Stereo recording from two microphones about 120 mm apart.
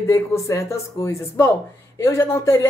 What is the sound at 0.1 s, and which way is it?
Speech, 25° left (ahead or behind).